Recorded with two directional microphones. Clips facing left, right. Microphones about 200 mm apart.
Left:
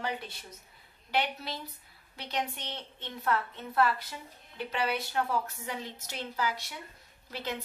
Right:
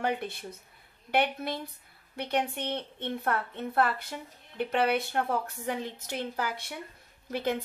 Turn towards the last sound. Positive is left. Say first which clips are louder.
# right 7 dB
turn(degrees=-55)  # may be behind; listen again after turning